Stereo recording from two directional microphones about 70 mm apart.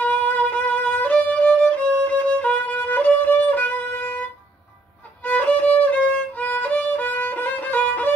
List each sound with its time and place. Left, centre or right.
0.0 s violin: left
2.3 s music: left
5.2 s violin: left